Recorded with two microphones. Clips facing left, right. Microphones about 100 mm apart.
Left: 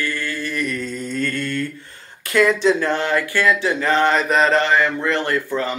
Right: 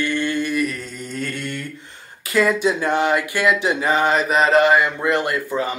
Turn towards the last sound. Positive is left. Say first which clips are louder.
# left 1 dB
turn(degrees=-15)  # may be behind; listen again after turning